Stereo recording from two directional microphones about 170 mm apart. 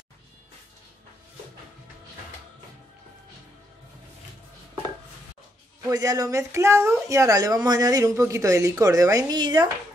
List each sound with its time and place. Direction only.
5.9 s speech: 20° right (ahead or behind)